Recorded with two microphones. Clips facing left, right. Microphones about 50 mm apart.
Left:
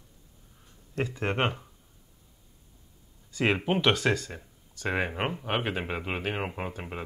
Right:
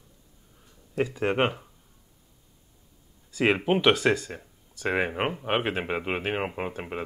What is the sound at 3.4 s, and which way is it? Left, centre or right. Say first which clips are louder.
Speech: right 3 dB; centre.